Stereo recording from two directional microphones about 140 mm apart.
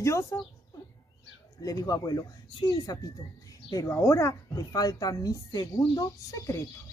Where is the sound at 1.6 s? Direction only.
25° left (ahead or behind).